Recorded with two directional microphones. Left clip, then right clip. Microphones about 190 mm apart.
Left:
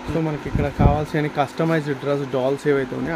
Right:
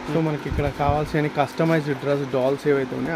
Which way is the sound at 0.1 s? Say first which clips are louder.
Even; centre (ahead or behind).